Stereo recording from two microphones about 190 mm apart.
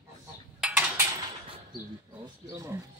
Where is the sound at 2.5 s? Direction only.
15° right (ahead or behind).